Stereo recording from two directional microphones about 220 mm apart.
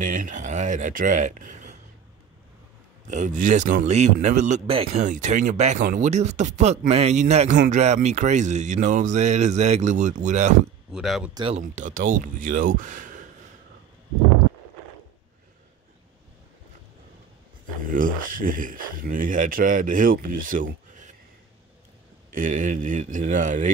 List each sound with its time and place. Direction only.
0.0 s speech: 40° right (ahead or behind)
3.1 s speech: 35° right (ahead or behind)
10.9 s speech: centre (ahead or behind)
11.3 s speech: 25° right (ahead or behind)
17.8 s speech: 40° right (ahead or behind)
22.3 s speech: 35° right (ahead or behind)